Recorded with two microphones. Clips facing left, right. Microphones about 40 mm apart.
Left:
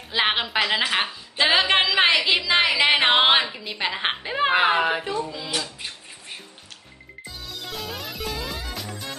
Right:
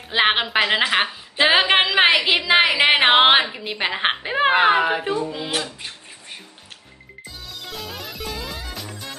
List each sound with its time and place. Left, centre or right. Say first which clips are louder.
0.1 s a woman's voice: right 4 dB; right
3.4 s a woman's voice: right 3 dB; centre
3.8 s a woman's voice: right 3 dB; right
4.7 s a woman's voice: right 2 dB; centre
5.0 s a woman's voice: right 4 dB; right
7.2 s music: even; centre